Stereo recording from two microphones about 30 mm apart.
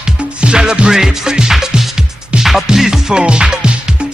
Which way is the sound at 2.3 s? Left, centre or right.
Right.